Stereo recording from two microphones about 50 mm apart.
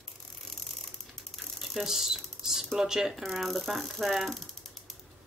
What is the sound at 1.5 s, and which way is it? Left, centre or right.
Mechanisms, centre.